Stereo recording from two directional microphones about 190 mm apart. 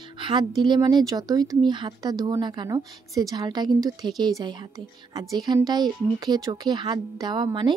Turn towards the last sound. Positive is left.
turn(degrees=-25)  # may be behind; listen again after turning